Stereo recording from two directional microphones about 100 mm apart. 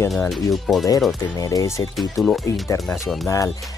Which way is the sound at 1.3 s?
35° left (ahead or behind).